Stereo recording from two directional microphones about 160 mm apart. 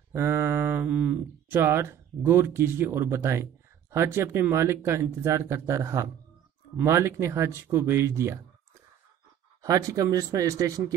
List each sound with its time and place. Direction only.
0.1 s speech: 15° right (ahead or behind)
9.6 s speech: 20° right (ahead or behind)